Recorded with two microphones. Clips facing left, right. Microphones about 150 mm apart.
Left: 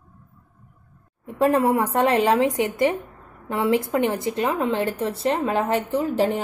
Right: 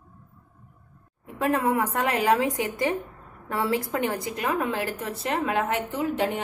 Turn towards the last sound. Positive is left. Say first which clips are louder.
# left 4 dB
turn(degrees=35)  # may be behind; listen again after turning